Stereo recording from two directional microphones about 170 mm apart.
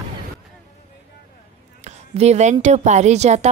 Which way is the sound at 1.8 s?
40° right (ahead or behind).